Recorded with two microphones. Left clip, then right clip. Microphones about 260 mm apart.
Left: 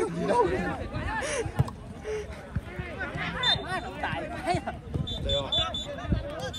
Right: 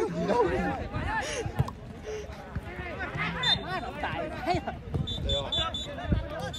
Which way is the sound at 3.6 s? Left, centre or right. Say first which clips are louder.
Left 1 dB; left.